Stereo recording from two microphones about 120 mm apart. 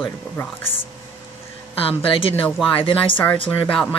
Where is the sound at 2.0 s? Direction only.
50° left (ahead or behind).